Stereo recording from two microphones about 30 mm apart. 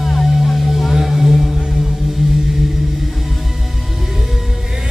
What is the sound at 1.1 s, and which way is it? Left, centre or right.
Music, centre.